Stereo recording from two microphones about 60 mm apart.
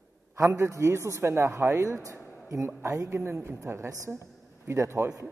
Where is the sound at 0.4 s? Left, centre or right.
Right.